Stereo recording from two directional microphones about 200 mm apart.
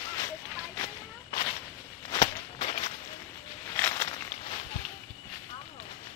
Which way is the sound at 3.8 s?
15° left (ahead or behind).